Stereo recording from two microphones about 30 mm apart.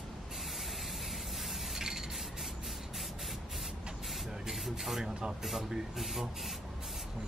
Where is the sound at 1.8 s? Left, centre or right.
Centre.